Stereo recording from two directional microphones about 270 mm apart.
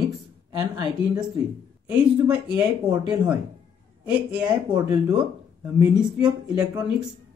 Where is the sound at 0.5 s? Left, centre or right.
Centre.